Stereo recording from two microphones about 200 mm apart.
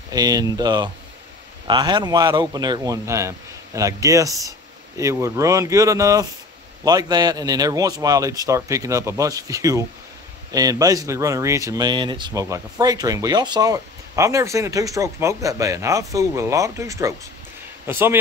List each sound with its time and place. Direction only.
0.1 s a man's voice: 20° right (ahead or behind)